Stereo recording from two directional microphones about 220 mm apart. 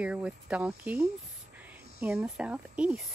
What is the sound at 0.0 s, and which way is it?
A woman's voice, 5° right (ahead or behind).